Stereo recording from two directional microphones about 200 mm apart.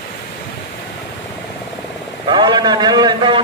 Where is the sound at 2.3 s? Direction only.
20° right (ahead or behind).